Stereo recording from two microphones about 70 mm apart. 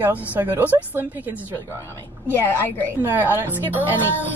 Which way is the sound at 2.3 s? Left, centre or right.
Left.